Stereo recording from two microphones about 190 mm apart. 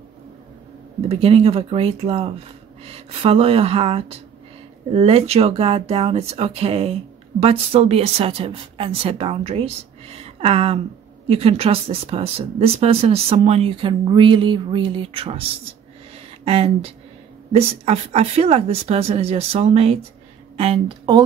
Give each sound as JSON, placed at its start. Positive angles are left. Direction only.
{"t": 1.0, "sound": "speech", "side_deg": -30}
{"t": 16.4, "sound": "speech", "side_deg": -30}